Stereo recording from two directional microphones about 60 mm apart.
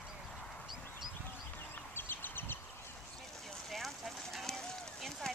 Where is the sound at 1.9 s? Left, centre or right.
Left.